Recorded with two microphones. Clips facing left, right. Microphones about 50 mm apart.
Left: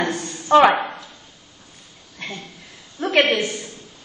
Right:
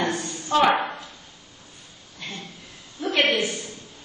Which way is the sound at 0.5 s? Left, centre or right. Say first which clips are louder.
Left 6 dB; left.